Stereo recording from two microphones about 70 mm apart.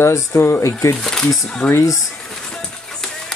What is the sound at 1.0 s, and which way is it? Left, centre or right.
Speech, centre.